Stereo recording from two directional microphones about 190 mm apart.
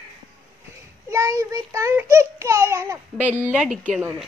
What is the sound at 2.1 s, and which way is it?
Babbling, 15° right (ahead or behind).